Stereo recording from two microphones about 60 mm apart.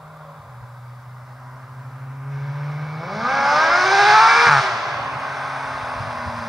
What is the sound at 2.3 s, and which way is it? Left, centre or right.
Civil defense siren, centre.